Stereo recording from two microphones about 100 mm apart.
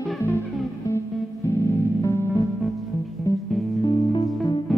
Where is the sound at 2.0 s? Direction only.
25° left (ahead or behind).